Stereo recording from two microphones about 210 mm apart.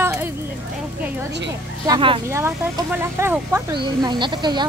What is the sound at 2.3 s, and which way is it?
Speech, 10° right (ahead or behind).